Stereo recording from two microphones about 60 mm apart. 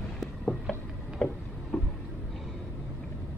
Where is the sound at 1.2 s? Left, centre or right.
Left.